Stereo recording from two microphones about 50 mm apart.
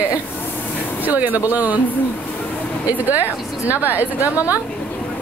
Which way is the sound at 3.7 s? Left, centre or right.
Right.